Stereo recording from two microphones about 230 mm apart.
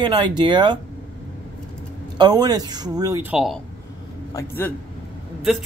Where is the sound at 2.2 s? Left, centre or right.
Centre.